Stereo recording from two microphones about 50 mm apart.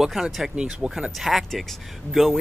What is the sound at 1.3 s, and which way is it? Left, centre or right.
Speech, centre.